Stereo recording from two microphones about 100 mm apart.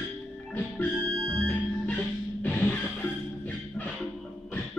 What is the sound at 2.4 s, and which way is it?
Music, 15° left (ahead or behind).